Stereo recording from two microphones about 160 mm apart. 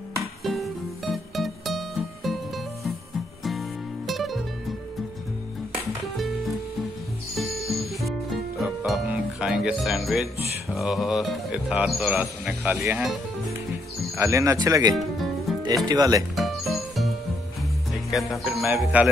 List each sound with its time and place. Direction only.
0.4 s music: centre (ahead or behind)
4.1 s music: centre (ahead or behind)
6.1 s music: centre (ahead or behind)
10.7 s speech: centre (ahead or behind); by 16.3 s 20° right (ahead or behind)
16.3 s music: centre (ahead or behind)
18.1 s speech: centre (ahead or behind)